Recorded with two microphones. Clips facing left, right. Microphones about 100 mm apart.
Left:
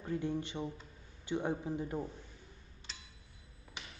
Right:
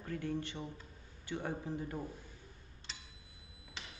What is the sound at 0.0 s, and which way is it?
A man's voice, 20° left (ahead or behind).